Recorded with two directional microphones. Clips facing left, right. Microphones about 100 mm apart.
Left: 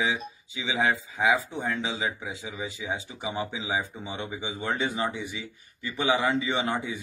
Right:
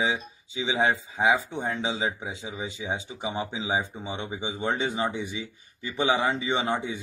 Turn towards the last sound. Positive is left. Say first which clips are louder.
# right 1 dB
turn(degrees=-25)  # may be behind; listen again after turning